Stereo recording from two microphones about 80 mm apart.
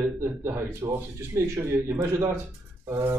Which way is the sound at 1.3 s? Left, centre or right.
Right.